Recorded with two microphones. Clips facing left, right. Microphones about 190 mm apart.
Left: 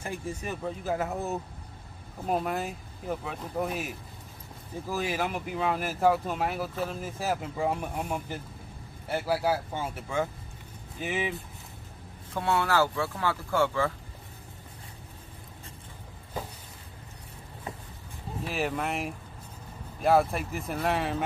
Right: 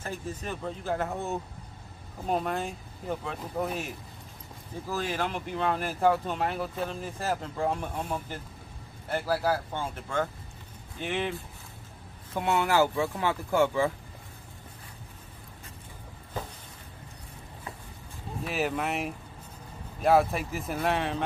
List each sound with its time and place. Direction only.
0.0 s speech: 10° left (ahead or behind)
12.4 s speech: 15° right (ahead or behind)
18.5 s speech: centre (ahead or behind)